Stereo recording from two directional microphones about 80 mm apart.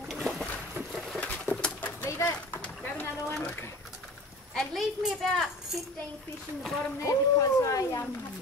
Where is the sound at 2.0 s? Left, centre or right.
Left.